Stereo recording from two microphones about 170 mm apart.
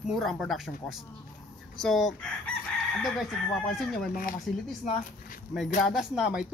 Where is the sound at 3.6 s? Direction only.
Centre (ahead or behind).